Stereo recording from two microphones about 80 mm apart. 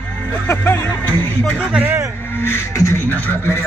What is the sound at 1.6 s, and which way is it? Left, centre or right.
Speech, centre.